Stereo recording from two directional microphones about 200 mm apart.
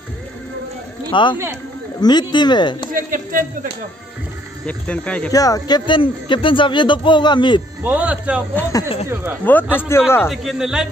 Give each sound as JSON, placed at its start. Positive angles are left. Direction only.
{"t": 1.1, "sound": "speech", "side_deg": 25}
{"t": 2.9, "sound": "speech", "side_deg": -45}
{"t": 4.6, "sound": "speech", "side_deg": 5}
{"t": 5.3, "sound": "speech", "side_deg": 15}
{"t": 7.8, "sound": "speech", "side_deg": -5}
{"t": 9.5, "sound": "speech", "side_deg": 10}
{"t": 10.3, "sound": "speech", "side_deg": 0}